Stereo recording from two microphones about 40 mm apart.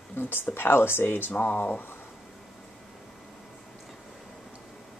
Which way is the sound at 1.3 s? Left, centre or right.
Left.